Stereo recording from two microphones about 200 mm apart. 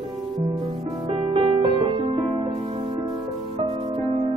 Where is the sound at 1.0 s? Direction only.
25° right (ahead or behind).